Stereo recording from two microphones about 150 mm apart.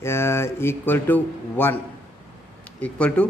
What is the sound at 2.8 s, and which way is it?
Mantra, 10° left (ahead or behind).